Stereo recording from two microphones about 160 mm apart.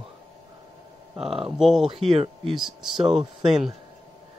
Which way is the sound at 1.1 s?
5° right (ahead or behind).